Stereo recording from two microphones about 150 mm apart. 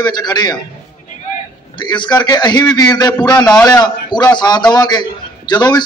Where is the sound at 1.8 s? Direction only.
30° left (ahead or behind).